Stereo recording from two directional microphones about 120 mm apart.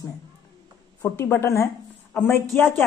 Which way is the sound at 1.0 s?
15° left (ahead or behind).